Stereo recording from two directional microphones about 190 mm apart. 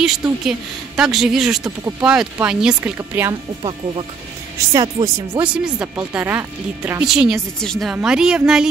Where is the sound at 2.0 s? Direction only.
5° right (ahead or behind).